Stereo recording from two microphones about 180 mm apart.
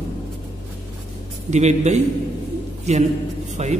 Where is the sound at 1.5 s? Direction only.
40° right (ahead or behind).